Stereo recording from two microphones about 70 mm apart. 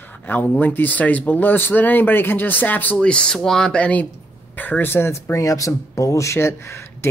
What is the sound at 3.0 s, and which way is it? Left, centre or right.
A man's voice, centre.